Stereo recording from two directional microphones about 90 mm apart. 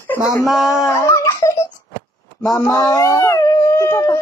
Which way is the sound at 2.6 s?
40° left (ahead or behind).